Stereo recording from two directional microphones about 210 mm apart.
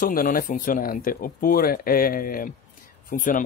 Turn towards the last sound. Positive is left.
turn(degrees=40)  # may be behind; listen again after turning